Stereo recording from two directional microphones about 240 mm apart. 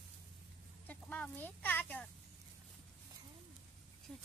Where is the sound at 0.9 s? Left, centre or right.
Centre.